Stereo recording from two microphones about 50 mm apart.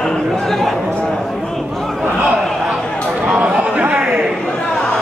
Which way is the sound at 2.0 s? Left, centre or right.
Right.